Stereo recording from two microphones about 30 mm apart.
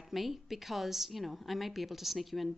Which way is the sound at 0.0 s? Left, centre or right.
Centre.